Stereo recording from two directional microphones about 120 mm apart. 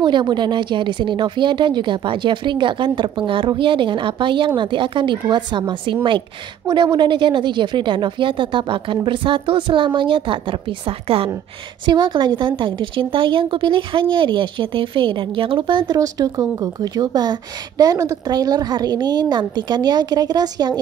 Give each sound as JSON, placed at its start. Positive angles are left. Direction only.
{"t": 0.0, "sound": "speech", "side_deg": -40}
{"t": 11.8, "sound": "speech", "side_deg": -40}